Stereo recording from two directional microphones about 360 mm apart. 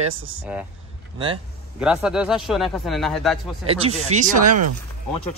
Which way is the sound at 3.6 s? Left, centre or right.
Centre.